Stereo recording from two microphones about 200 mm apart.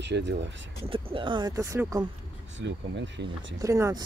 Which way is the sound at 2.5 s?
65° right (ahead or behind).